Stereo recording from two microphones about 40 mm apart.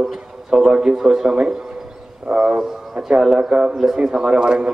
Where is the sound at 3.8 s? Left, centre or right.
Centre.